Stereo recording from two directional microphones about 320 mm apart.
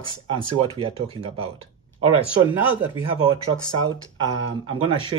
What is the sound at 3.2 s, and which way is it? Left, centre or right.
Speech, centre.